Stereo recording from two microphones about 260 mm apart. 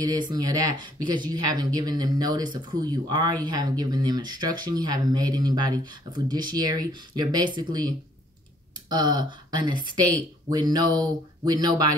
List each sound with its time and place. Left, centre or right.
0.0 s speech: centre